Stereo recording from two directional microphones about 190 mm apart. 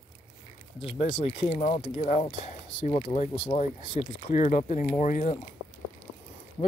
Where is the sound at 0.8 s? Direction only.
30° left (ahead or behind).